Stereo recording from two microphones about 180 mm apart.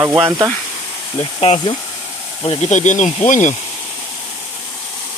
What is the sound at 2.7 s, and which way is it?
Speech, 40° left (ahead or behind).